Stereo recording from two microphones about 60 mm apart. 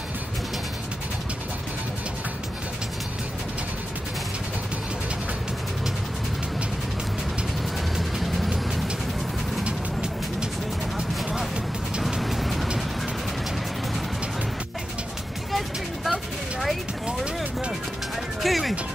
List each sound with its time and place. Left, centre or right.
7.9 s vehicle: centre
11.2 s vehicle: centre
12.2 s vehicle: centre
16.1 s a sound: centre
17.2 s music: centre
18.4 s music: centre